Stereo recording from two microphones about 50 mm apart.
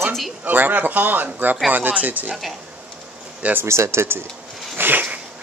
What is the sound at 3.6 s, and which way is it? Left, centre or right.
Speech, right.